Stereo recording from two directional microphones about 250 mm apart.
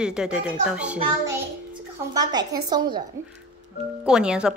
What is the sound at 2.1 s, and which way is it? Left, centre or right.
Speech, centre.